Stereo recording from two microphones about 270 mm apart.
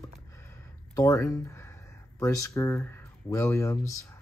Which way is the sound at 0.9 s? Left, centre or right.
Centre.